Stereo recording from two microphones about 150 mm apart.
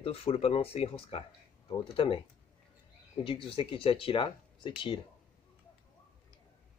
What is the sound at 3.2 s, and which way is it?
Speech, 35° left (ahead or behind).